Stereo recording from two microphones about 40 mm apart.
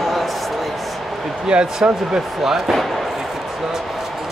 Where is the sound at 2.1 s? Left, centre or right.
Centre.